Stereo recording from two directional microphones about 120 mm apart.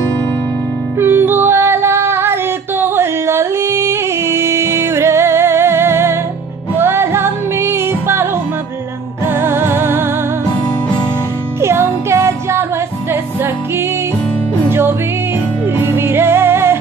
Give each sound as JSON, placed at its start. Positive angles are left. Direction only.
{"t": 0.9, "sound": "music", "side_deg": -20}
{"t": 11.6, "sound": "music", "side_deg": -20}
{"t": 14.7, "sound": "music", "side_deg": -20}